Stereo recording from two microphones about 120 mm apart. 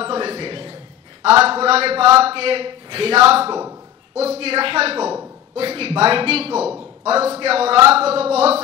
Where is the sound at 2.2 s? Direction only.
55° right (ahead or behind).